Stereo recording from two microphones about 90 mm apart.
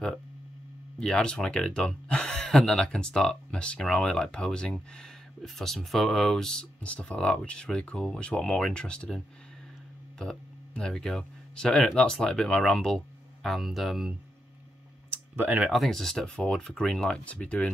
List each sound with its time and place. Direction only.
0.9 s speech: 10° left (ahead or behind)
15.0 s computer keyboard: 20° right (ahead or behind)
15.7 s speech: 5° left (ahead or behind)